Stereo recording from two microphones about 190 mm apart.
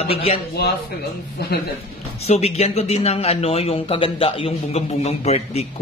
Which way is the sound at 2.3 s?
35° left (ahead or behind).